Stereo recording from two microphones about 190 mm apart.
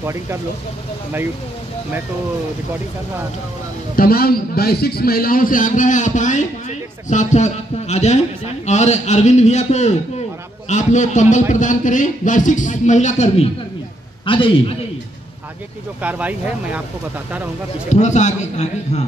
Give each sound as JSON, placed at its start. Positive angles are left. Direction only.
{"t": 0.0, "sound": "speech", "side_deg": -15}
{"t": 3.9, "sound": "a man's voice", "side_deg": 50}
{"t": 14.2, "sound": "a man's voice", "side_deg": 25}
{"t": 16.0, "sound": "speech", "side_deg": -10}
{"t": 17.8, "sound": "a man's voice", "side_deg": 40}